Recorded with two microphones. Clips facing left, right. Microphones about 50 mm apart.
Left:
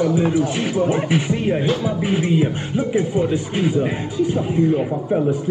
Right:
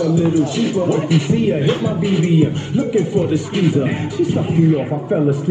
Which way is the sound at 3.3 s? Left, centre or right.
Right.